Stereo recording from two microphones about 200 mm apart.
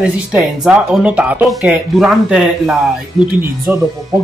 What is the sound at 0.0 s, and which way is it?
Speech, 5° right (ahead or behind).